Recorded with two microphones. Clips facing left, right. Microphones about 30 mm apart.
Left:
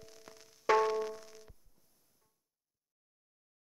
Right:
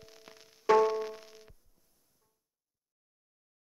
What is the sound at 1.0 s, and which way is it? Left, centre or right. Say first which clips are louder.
Music: even; right.